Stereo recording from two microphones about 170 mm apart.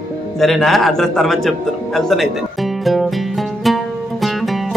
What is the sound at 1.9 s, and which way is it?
Music, centre (ahead or behind).